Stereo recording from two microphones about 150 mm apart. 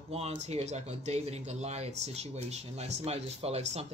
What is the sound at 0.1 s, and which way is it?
Speech, 40° right (ahead or behind).